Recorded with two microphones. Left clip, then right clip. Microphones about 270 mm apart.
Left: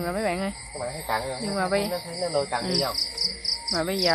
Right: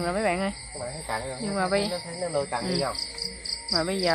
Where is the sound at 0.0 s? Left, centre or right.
Centre.